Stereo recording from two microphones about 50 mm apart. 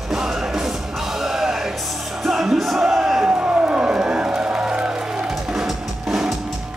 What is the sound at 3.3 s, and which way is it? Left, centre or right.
Music, right.